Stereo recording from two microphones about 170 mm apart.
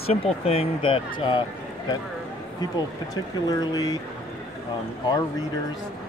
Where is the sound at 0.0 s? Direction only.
35° left (ahead or behind).